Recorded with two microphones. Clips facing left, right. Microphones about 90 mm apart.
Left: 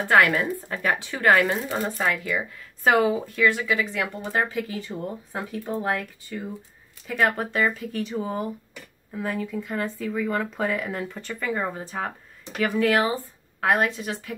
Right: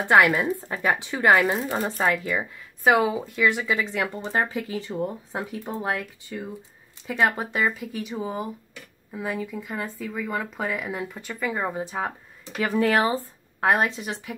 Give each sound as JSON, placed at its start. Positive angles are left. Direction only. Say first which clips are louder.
{"t": 0.1, "sound": "speech", "louder": "right 1 dB", "side_deg": -15}
{"t": 2.8, "sound": "speech", "louder": "even", "side_deg": -5}
{"t": 3.3, "sound": "speech", "louder": "right 1 dB", "side_deg": -20}